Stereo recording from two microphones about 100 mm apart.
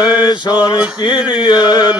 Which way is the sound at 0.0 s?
45° left (ahead or behind).